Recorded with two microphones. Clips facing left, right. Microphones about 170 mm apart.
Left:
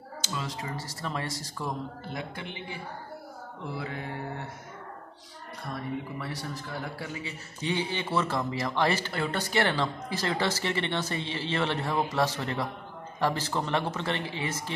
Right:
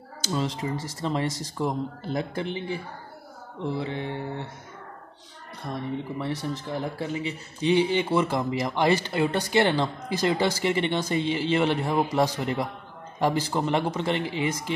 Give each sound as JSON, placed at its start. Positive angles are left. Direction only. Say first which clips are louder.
{"t": 0.2, "sound": "speech", "louder": "right 8 dB", "side_deg": -30}
{"t": 2.1, "sound": "speech", "louder": "right 10 dB", "side_deg": -35}
{"t": 5.7, "sound": "a man's voice", "louder": "right 4 dB", "side_deg": -25}